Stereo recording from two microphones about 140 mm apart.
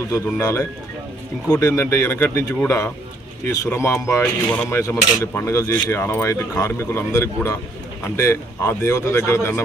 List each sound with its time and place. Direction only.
0.1 s speech: 25° left (ahead or behind)
4.2 s speech: 5° left (ahead or behind)
4.6 s speech: 20° left (ahead or behind)